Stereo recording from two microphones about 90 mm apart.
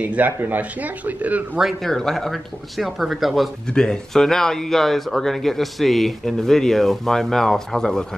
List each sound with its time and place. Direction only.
0.0 s speech: 15° right (ahead or behind)
1.6 s speech: centre (ahead or behind)